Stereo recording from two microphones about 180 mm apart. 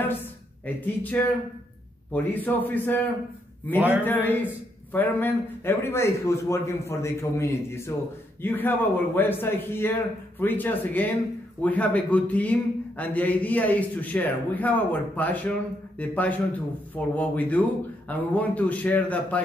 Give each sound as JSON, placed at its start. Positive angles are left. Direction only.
{"t": 0.0, "sound": "a man's voice", "side_deg": 10}
{"t": 4.0, "sound": "a man's voice", "side_deg": 10}